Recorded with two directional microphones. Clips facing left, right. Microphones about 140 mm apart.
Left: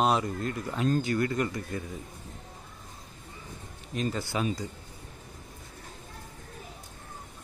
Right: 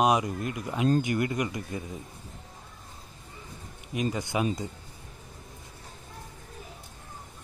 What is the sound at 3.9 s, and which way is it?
Speech, 15° right (ahead or behind).